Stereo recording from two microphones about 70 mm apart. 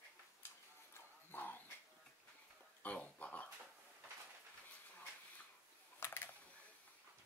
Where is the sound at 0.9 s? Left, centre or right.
Left.